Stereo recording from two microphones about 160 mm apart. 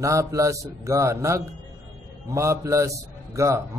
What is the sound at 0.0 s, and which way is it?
A man's voice, 20° right (ahead or behind).